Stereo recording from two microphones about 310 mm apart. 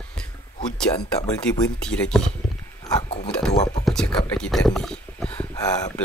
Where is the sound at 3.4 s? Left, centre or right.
Centre.